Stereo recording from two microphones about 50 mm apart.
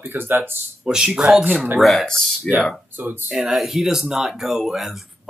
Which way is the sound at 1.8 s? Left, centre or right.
Centre.